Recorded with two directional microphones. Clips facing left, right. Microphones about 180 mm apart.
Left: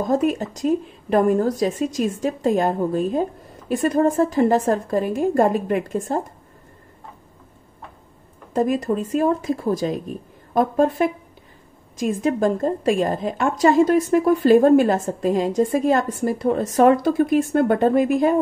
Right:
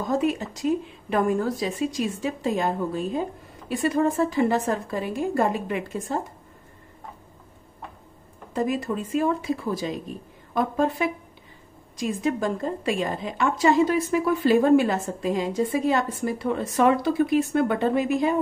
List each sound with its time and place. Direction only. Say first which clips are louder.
0.0 s a woman's voice: left 4 dB; 45° left (ahead or behind)
8.5 s a woman's voice: left 5 dB; 45° left (ahead or behind)